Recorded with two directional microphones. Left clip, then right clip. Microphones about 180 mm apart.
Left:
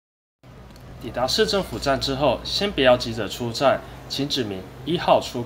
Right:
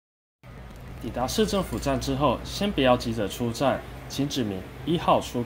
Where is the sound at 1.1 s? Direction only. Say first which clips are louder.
Left 5 dB; 25° right (ahead or behind).